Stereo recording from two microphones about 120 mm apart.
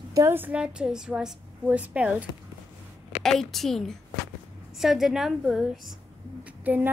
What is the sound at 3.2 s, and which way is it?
A woman's voice, centre (ahead or behind).